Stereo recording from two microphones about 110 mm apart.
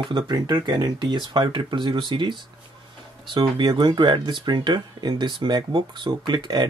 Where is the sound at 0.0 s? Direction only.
45° right (ahead or behind).